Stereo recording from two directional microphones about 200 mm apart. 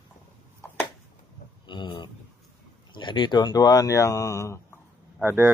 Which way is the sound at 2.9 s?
25° left (ahead or behind).